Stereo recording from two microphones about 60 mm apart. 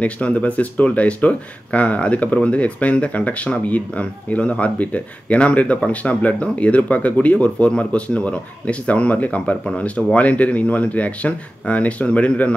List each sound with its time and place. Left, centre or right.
0.0 s speech: left